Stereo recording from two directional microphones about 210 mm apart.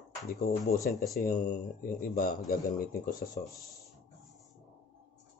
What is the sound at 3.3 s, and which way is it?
Speech, 15° left (ahead or behind).